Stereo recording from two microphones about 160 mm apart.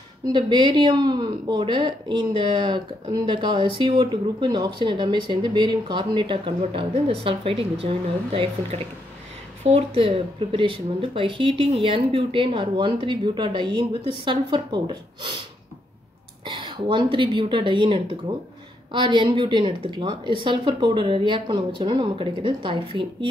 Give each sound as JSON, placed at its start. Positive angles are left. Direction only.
{"t": 0.3, "sound": "speech", "side_deg": -30}
{"t": 16.4, "sound": "speech", "side_deg": -30}